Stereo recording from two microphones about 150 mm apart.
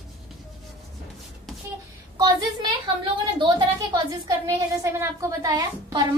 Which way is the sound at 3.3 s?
30° right (ahead or behind).